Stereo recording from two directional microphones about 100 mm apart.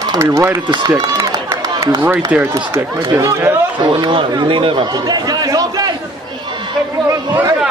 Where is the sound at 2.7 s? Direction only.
25° right (ahead or behind).